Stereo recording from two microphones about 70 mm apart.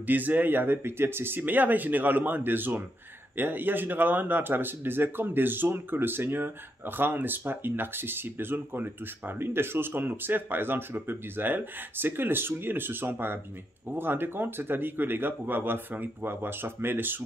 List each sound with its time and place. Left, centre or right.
0.0 s speech: right